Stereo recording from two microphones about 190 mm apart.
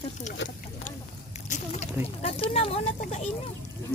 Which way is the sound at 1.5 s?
35° left (ahead or behind).